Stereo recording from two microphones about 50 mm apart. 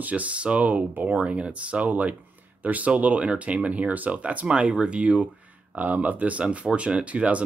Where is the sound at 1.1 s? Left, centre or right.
Right.